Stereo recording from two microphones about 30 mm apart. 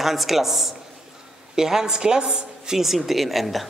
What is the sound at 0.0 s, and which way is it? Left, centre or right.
A man's voice, centre.